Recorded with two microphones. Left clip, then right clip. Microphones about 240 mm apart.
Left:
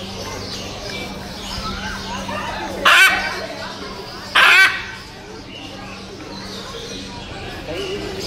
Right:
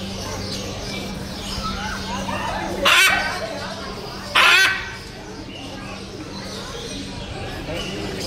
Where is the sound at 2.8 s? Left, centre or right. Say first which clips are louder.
Left 4 dB; centre.